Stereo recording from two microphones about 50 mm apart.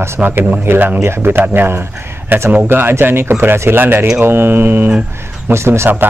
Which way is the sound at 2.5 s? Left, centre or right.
Right.